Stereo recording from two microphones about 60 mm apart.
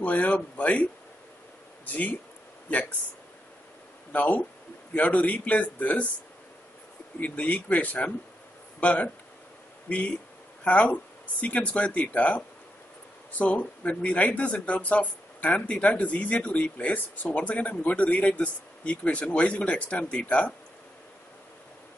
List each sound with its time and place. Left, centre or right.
0.0 s speech: left
1.9 s speech: left
4.1 s speech: left
7.2 s speech: left